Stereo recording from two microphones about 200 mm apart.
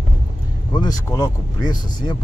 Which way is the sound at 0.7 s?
20° left (ahead or behind).